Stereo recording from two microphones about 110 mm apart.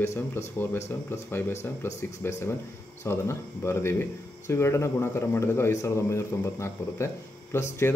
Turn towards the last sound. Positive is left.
turn(degrees=25)  # may be behind; listen again after turning